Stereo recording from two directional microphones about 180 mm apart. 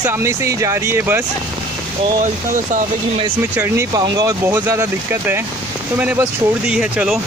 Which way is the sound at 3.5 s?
10° right (ahead or behind).